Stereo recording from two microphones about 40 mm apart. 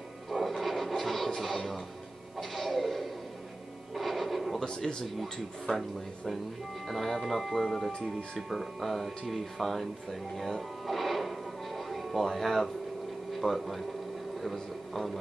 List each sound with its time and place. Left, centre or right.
0.3 s television: centre
2.3 s a sound: centre
4.6 s speech: centre
6.9 s speech: centre